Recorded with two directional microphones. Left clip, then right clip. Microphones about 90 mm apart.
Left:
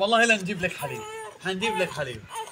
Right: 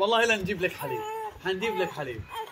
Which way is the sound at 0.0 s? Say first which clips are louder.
Left 3 dB; 45° right (ahead or behind).